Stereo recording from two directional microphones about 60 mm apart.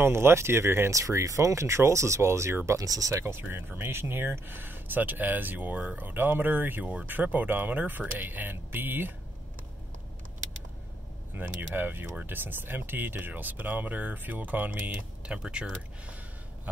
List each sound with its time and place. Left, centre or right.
0.0 s speech: right
0.9 s speech: right
2.9 s speech: right
3.3 s speech: right
11.3 s speech: right
15.3 s speech: centre